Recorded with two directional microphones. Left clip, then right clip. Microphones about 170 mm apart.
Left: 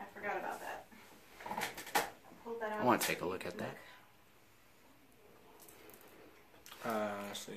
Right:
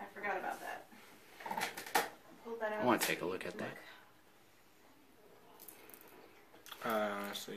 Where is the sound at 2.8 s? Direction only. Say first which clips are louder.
Left 1 dB; 10° left (ahead or behind).